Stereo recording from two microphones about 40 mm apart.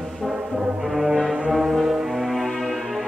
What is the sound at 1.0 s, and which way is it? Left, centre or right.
Music, centre.